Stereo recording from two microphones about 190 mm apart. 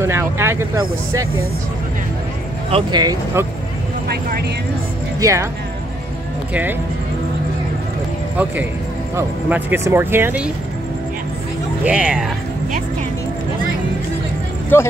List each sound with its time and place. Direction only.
0.0 s speech: 15° right (ahead or behind)
2.7 s speech: 20° right (ahead or behind)
4.1 s speech: 55° right (ahead or behind)
5.2 s speech: 15° right (ahead or behind)
6.5 s speech: 10° right (ahead or behind)
9.1 s speech: 10° right (ahead or behind)
11.8 s speech: 5° right (ahead or behind)
14.7 s speech: 10° left (ahead or behind)